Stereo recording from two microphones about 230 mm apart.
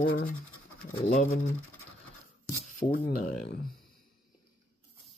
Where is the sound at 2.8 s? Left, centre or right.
Left.